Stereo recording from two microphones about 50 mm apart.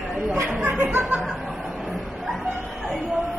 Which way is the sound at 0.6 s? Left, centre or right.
Right.